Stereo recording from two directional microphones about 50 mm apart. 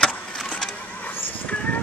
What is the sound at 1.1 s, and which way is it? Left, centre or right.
Vehicle, left.